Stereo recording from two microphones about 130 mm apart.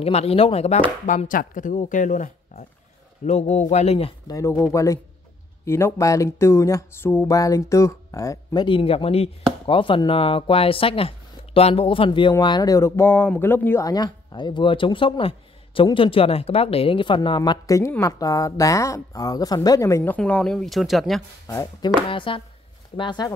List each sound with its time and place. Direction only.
0.0 s chopping: 50° left (ahead or behind)
1.0 s speech: 80° left
3.3 s speech: 60° left (ahead or behind)
4.3 s speech: 25° left (ahead or behind)
8.6 s chopping: 45° left (ahead or behind)
17.4 s speech: 25° left (ahead or behind)
20.2 s speech: 5° left (ahead or behind)
21.5 s speech: 30° left (ahead or behind)
22.1 s chopping: 40° left (ahead or behind)